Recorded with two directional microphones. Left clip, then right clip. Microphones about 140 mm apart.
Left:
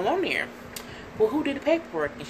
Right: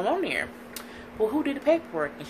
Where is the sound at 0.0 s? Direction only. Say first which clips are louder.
Left 1 dB; 15° right (ahead or behind).